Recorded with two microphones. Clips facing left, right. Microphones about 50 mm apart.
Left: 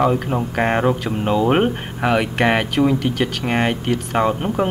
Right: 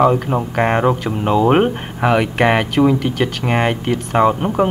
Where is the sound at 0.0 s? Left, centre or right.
Centre.